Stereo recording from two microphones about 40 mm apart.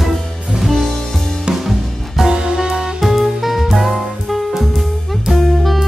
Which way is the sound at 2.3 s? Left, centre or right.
Centre.